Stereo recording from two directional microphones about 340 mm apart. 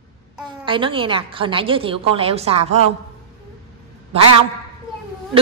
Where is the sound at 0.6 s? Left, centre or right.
Centre.